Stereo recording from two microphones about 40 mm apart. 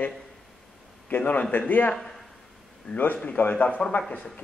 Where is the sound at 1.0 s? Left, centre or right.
Left.